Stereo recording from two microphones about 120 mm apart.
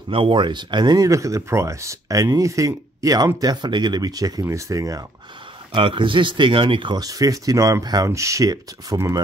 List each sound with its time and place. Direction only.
0.1 s speech: 45° right (ahead or behind); by 5.0 s 30° right (ahead or behind)
5.7 s speech: 45° right (ahead or behind); by 9.2 s 30° right (ahead or behind)